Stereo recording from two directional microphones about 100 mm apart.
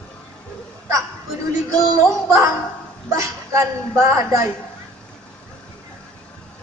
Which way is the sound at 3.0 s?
30° right (ahead or behind).